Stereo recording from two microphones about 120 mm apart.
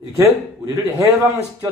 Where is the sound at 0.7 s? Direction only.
25° right (ahead or behind).